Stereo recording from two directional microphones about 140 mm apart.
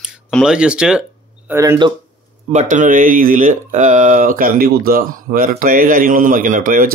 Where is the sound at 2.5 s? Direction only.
60° right (ahead or behind).